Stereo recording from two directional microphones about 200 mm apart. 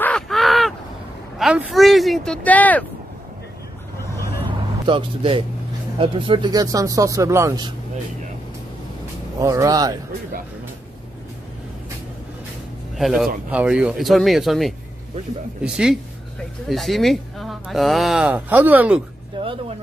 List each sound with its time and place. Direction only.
0.0 s a sound: 5° left (ahead or behind)
1.4 s speech: 5° right (ahead or behind)
4.8 s speech: 25° right (ahead or behind)
9.4 s speech: 15° right (ahead or behind)
12.9 s speech: centre (ahead or behind)